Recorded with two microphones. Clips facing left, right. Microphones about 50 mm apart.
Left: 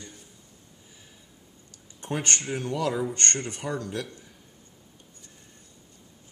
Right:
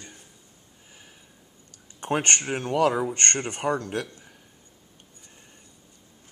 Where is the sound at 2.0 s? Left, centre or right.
Right.